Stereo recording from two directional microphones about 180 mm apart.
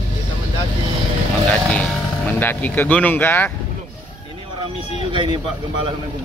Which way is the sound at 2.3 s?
10° left (ahead or behind).